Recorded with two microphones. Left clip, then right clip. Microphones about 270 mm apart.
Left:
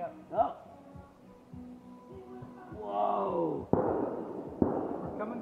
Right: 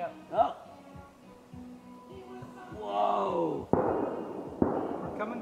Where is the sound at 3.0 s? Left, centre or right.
Centre.